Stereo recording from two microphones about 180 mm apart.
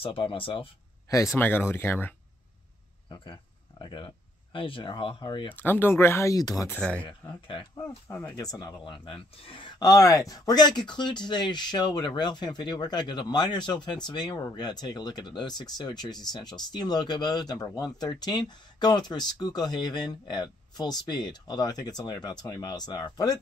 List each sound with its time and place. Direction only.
0.0 s speech: 30° left (ahead or behind)
1.1 s speech: 15° left (ahead or behind)
3.8 s speech: 30° left (ahead or behind)
5.5 s speech: 10° left (ahead or behind)
6.8 s speech: 5° left (ahead or behind)
7.1 s speech: 25° left (ahead or behind)
7.8 s speech: 10° left (ahead or behind)